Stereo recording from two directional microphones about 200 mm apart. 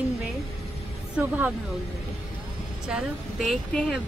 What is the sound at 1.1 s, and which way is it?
Speech, 10° right (ahead or behind).